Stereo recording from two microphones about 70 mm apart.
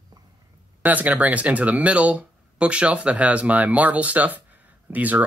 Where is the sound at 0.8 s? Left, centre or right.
Right.